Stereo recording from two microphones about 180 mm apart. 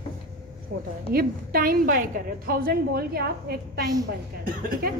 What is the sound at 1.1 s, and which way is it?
A woman's voice, 55° right (ahead or behind).